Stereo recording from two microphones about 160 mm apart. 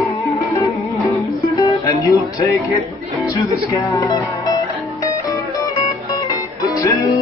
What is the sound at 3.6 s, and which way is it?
Speech, 20° left (ahead or behind).